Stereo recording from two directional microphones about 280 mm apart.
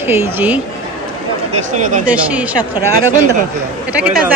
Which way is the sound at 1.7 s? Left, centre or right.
Right.